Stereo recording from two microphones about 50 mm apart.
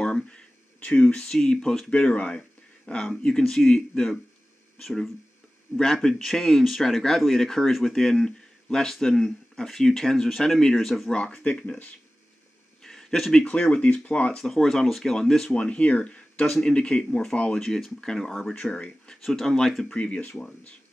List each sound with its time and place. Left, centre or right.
0.0 s a sound: centre
0.7 s speech: left
1.3 s speech: centre
1.9 s speech: left
12.8 s a sound: centre
13.4 s speech: left
14.3 s speech: centre
15.5 s speech: left
17.6 s speech: centre
18.5 s speech: centre
19.2 s speech: centre
19.8 s speech: centre